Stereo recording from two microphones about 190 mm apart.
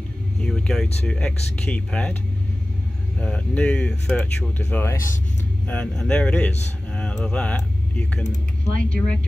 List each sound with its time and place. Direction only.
0.4 s speech: 5° left (ahead or behind)
3.2 s speech: 5° left (ahead or behind)
8.7 s speech: 45° right (ahead or behind)